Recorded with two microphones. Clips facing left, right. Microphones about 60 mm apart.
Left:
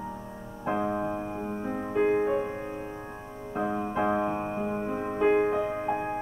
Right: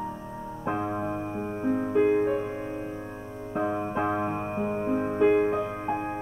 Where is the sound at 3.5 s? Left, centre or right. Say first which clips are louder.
Right 1 dB; right.